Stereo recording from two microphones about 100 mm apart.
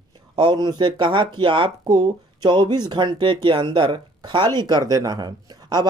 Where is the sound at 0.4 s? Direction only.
45° right (ahead or behind).